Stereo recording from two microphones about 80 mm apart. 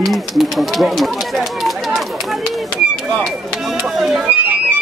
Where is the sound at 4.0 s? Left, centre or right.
Centre.